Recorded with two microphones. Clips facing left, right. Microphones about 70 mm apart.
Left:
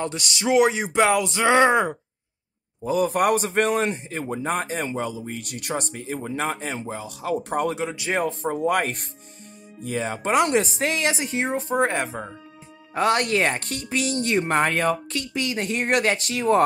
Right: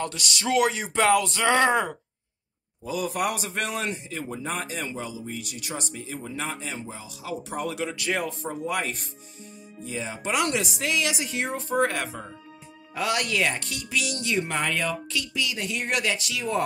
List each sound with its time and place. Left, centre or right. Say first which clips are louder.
0.3 s speech: left 5 dB; centre
2.8 s a man's voice: left 6 dB; left
8.1 s a man's voice: left 6 dB; left